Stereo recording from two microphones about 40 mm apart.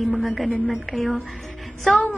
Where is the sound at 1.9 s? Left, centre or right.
Left.